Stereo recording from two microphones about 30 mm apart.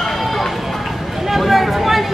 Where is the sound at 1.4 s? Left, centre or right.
Centre.